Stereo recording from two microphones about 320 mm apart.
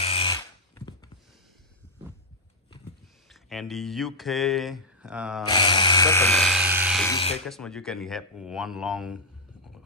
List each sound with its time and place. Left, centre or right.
0.0 s a sound: centre
3.3 s speech: centre
5.5 s speech: centre
7.1 s speech: centre
7.4 s speech: centre